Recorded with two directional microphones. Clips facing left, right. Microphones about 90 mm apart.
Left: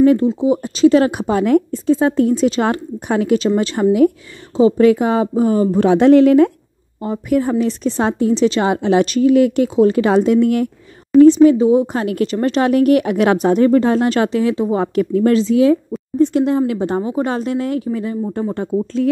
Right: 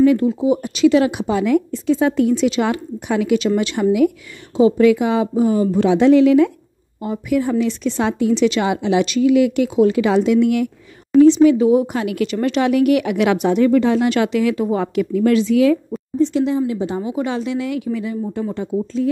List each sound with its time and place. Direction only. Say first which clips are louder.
0.0 s speech: left 2 dB; 40° left (ahead or behind)
0.3 s speech: left 1 dB; 30° left (ahead or behind)
11.5 s speech: left 1 dB; 30° left (ahead or behind)
12.0 s speech: left 2 dB; 40° left (ahead or behind)
15.0 s speech: left 2 dB; 40° left (ahead or behind)
16.2 s speech: left 3 dB; 50° left (ahead or behind)
17.1 s speech: left 2 dB; 45° left (ahead or behind)